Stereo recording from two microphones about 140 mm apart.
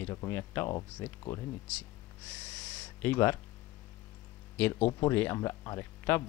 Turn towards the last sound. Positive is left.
turn(degrees=20)  # may be behind; listen again after turning